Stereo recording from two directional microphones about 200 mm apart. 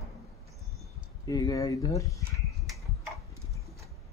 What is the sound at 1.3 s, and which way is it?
Speech, 15° left (ahead or behind).